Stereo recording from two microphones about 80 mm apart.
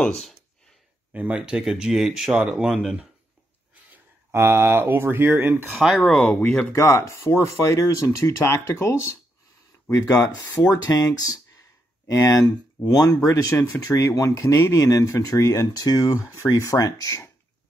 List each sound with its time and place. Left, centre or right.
1.1 s speech: centre
4.3 s speech: right
5.9 s speech: centre
6.7 s speech: left
10.4 s speech: left
10.9 s speech: left